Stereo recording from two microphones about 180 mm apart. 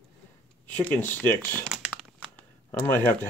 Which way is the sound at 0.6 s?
10° left (ahead or behind).